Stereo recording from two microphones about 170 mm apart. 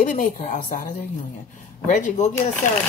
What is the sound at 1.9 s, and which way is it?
Speech, 50° left (ahead or behind).